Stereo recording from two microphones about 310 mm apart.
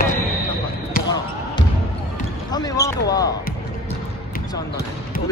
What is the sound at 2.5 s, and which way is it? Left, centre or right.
Basketball bounce, centre.